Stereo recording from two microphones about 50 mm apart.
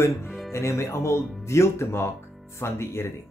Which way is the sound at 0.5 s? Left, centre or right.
Left.